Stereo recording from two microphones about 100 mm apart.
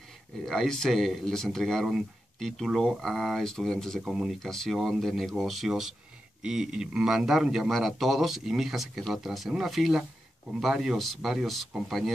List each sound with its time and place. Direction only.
0.5 s a man's voice: 5° left (ahead or behind)
4.0 s a man's voice: 5° right (ahead or behind)